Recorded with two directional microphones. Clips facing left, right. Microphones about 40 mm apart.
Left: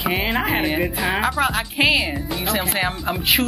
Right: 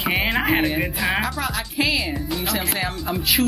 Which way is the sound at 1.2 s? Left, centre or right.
Left.